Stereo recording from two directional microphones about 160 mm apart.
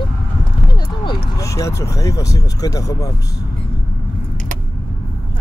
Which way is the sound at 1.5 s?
20° left (ahead or behind).